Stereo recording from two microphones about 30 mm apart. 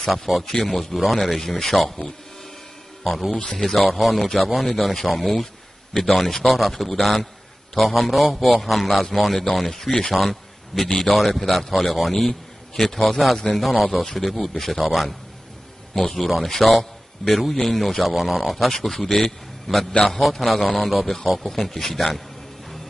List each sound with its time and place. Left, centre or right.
0.3 s speech: centre
0.7 s a man's voice: centre
3.1 s a man's voice: centre
3.4 s a man's voice: centre
10.1 s a man's voice: centre
16.2 s a man's voice: centre
18.7 s a man's voice: centre